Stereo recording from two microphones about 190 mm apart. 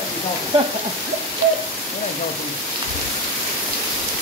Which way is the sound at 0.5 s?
30° right (ahead or behind).